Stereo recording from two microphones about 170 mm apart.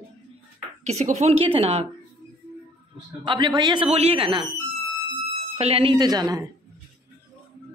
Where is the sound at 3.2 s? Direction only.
25° right (ahead or behind).